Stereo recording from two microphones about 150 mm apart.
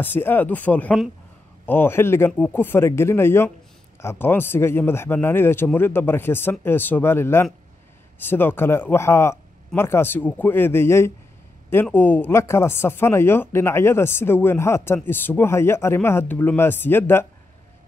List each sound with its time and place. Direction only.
0.0 s speech: 15° left (ahead or behind)